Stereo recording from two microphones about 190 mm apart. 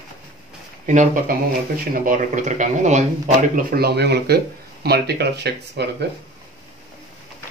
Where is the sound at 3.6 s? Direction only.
50° right (ahead or behind).